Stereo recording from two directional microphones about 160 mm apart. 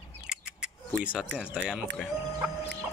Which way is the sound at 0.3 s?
5° right (ahead or behind).